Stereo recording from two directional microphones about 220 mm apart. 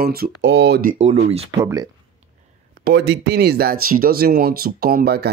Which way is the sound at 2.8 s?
45° right (ahead or behind).